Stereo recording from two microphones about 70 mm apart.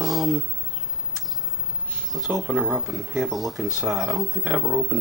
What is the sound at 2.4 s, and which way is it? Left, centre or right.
Speech, centre.